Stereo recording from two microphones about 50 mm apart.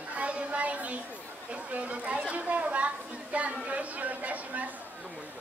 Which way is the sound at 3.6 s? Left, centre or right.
Right.